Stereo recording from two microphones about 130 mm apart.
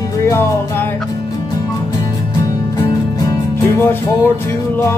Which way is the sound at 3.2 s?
20° left (ahead or behind).